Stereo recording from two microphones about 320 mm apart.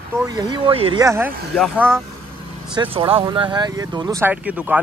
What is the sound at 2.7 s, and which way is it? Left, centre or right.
Speech, centre.